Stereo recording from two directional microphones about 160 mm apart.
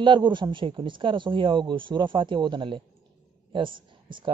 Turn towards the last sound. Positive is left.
turn(degrees=-30)  # may be behind; listen again after turning